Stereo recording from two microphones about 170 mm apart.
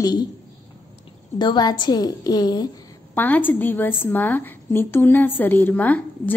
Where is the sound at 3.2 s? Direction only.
10° left (ahead or behind).